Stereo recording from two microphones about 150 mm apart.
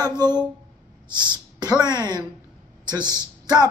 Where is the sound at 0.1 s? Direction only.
30° right (ahead or behind).